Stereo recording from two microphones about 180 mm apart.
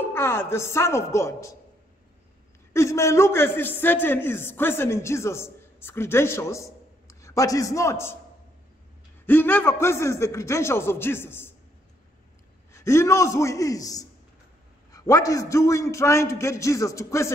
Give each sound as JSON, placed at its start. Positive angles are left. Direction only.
{"t": 0.1, "sound": "a man's voice", "side_deg": 15}
{"t": 2.7, "sound": "a man's voice", "side_deg": 15}
{"t": 9.2, "sound": "a man's voice", "side_deg": 10}
{"t": 12.7, "sound": "a man's voice", "side_deg": 15}